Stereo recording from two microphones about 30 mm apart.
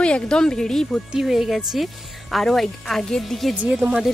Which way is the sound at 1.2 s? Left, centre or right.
Centre.